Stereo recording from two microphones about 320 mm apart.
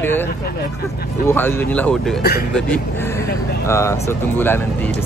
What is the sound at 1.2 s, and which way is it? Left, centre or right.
Speech, centre.